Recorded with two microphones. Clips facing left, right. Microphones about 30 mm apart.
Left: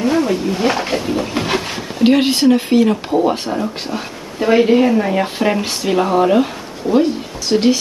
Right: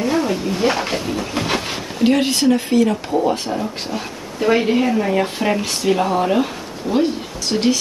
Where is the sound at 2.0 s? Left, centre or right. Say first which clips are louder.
Left 3 dB; left.